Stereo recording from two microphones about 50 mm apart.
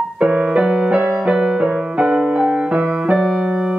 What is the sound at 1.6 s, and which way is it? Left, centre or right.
Music, right.